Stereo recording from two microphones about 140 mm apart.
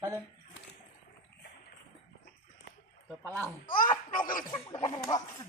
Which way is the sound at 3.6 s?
80° left.